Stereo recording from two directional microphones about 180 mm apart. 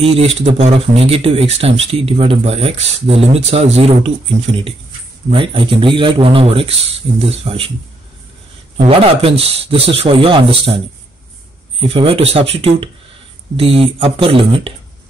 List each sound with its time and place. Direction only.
0.0 s speech: 35° right (ahead or behind)
5.3 s a man's voice: 30° right (ahead or behind)
8.8 s speech: 30° right (ahead or behind)
11.9 s speech: 30° right (ahead or behind)